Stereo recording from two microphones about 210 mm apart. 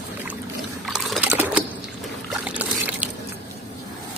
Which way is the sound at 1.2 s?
10° right (ahead or behind).